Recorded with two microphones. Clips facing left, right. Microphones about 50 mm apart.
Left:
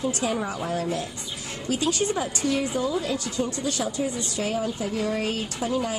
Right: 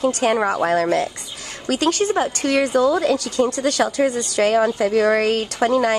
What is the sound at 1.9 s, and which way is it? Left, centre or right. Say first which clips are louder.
A woman's voice: right 8 dB; right.